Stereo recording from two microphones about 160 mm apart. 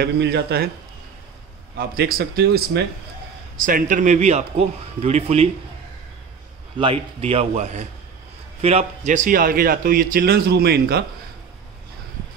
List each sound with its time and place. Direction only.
0.0 s speech: 85° right
1.8 s a man's voice: 70° right (ahead or behind)
3.5 s a man's voice: 60° right (ahead or behind); by 5.5 s 40° right (ahead or behind)
6.8 s a man's voice: 35° right (ahead or behind); by 11.1 s 80° right